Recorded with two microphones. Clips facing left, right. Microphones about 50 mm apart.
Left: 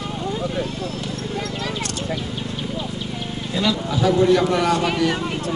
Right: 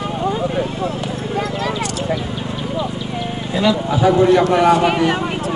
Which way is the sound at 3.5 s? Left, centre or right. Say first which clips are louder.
Right 5 dB; centre.